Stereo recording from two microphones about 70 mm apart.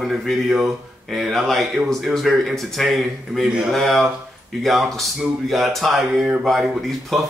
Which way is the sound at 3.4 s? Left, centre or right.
Centre.